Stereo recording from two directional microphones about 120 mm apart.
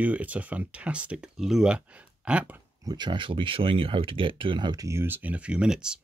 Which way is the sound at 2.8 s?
40° right (ahead or behind).